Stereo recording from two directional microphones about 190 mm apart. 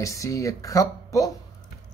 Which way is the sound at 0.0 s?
15° left (ahead or behind).